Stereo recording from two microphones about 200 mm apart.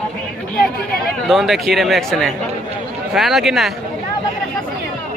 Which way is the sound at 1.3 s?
Centre (ahead or behind).